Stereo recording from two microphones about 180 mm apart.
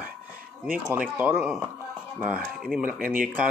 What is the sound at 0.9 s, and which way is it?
Speech, 10° right (ahead or behind).